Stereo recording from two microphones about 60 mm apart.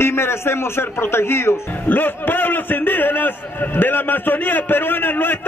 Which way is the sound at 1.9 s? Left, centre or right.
Left.